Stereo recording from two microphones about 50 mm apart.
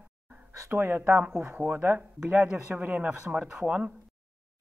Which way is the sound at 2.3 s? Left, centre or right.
Right.